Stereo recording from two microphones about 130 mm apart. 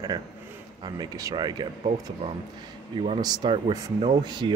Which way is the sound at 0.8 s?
30° right (ahead or behind).